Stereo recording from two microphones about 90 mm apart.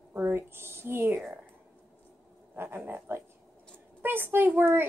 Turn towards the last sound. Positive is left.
turn(degrees=-25)  # may be behind; listen again after turning